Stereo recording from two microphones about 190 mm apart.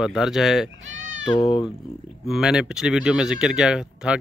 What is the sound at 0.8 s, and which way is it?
Bleat, 80° right.